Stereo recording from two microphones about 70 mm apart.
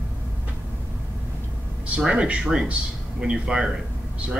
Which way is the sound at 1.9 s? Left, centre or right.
Centre.